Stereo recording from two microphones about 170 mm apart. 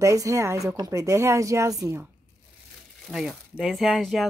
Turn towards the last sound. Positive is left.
turn(degrees=0)  # may be behind; listen again after turning